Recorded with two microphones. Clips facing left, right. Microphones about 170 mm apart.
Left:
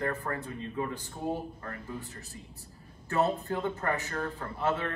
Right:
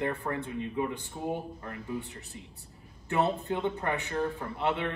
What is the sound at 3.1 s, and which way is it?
Speech, 20° right (ahead or behind).